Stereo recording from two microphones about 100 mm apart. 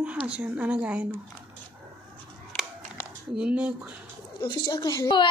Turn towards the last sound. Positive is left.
turn(degrees=35)  # may be behind; listen again after turning